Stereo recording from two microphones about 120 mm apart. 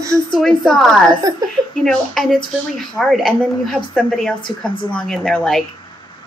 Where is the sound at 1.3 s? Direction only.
30° right (ahead or behind).